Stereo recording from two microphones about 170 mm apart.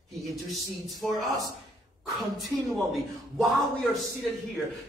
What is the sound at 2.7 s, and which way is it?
Speech, centre (ahead or behind).